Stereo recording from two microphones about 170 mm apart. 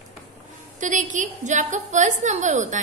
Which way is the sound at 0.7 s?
50° right (ahead or behind).